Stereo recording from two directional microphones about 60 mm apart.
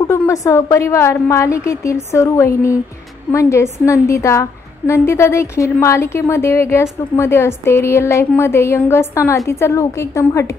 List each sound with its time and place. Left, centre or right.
0.0 s a woman's voice: left